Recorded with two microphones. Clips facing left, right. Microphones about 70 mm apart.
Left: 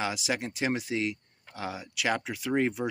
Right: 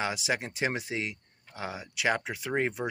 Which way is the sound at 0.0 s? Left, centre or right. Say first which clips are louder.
Even; right.